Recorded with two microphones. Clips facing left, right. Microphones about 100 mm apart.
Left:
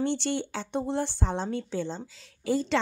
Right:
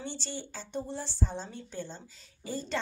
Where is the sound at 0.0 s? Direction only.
65° left (ahead or behind).